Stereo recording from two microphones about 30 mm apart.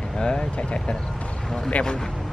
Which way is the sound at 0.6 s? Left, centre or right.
Left.